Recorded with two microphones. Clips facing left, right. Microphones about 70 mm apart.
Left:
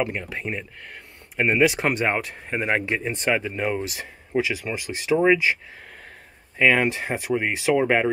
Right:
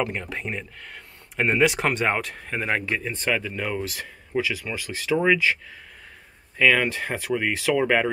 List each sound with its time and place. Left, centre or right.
0.0 s speech: centre
6.6 s speech: left